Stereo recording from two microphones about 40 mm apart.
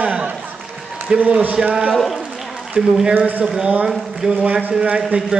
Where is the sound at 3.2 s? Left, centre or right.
Right.